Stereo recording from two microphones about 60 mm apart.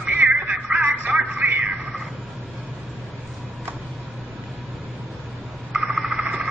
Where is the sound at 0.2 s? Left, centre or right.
Centre.